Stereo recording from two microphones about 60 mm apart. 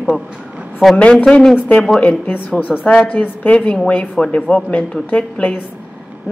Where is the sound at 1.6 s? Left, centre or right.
Left; by 5.0 s centre.